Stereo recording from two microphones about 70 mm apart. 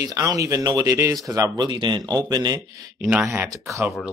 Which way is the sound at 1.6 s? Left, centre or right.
Right.